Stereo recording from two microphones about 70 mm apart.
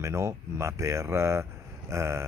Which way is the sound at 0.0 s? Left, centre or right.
Right.